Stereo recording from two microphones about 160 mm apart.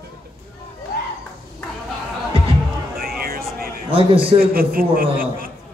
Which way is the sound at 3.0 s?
70° right (ahead or behind).